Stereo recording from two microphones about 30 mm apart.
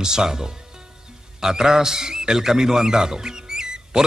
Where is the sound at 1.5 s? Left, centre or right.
Right.